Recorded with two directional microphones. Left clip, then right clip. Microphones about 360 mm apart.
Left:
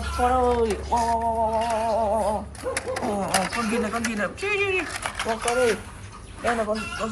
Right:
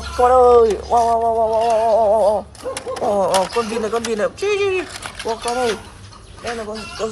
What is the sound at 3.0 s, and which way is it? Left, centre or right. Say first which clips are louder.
Speech: right 11 dB; centre.